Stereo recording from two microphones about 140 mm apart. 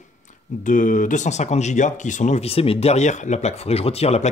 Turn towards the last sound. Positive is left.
turn(degrees=45)  # may be behind; listen again after turning